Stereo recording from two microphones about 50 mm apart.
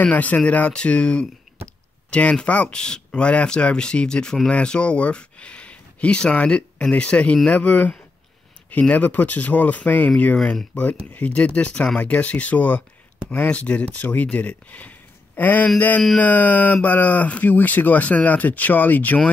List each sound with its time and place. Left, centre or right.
0.0 s speech: left